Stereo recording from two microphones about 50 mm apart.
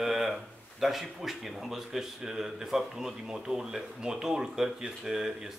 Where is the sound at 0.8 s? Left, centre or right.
Centre.